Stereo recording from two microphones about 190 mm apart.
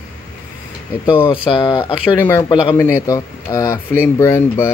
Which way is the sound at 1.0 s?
30° left (ahead or behind).